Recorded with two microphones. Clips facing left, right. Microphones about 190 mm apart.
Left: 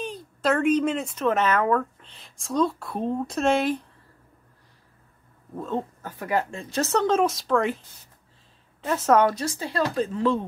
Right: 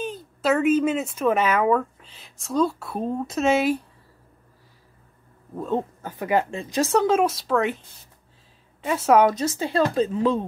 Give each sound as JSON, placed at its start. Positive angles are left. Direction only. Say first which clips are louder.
{"t": 0.0, "sound": "speech", "louder": "right 1 dB", "side_deg": 0}
{"t": 5.6, "sound": "speech", "louder": "right 3 dB", "side_deg": -15}
{"t": 8.8, "sound": "speech", "louder": "right 2 dB", "side_deg": -10}
{"t": 9.3, "sound": "a woman's voice", "louder": "right 5 dB", "side_deg": -20}